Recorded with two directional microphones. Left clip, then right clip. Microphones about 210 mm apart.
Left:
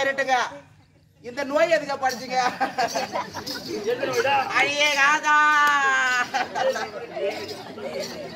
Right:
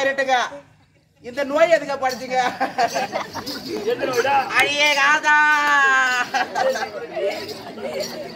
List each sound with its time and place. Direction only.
0.0 s a woman's voice: 5° left (ahead or behind)
3.8 s speech: 15° right (ahead or behind)
4.5 s speech: 5° right (ahead or behind)